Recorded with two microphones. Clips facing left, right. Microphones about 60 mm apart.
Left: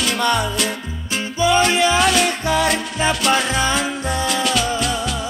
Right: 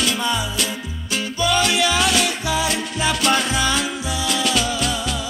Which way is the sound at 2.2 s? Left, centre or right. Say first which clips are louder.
Left 3 dB; left.